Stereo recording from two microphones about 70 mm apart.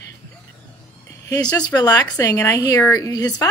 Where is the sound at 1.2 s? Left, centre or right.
Left.